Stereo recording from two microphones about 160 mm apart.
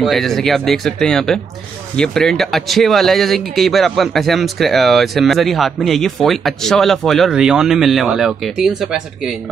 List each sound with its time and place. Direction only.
0.0 s speech: centre (ahead or behind)